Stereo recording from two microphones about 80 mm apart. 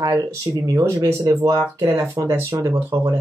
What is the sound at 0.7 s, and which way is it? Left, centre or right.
Speech, right.